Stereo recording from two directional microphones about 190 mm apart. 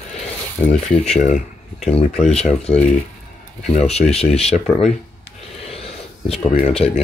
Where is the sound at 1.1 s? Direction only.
40° left (ahead or behind).